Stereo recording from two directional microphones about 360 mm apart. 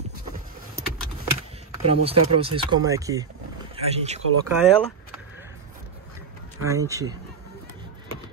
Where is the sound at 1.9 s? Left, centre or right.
Centre.